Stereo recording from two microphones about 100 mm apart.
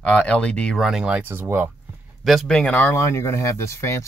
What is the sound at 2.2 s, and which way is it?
Speech, centre (ahead or behind).